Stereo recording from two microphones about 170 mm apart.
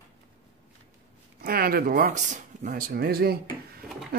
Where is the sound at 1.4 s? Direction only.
60° right (ahead or behind).